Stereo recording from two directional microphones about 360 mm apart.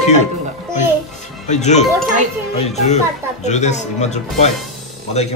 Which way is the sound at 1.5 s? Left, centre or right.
Centre.